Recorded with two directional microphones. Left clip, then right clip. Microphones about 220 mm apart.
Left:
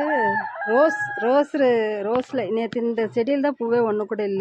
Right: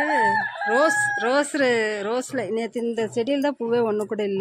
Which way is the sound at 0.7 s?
20° left (ahead or behind).